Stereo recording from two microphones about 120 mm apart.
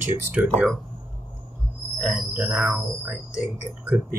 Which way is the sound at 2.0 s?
5° right (ahead or behind).